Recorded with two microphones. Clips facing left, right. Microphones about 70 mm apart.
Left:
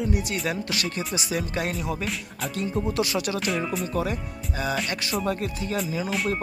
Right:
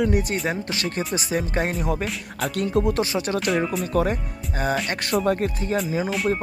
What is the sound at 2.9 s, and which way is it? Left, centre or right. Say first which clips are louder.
Speech: right 2 dB; right.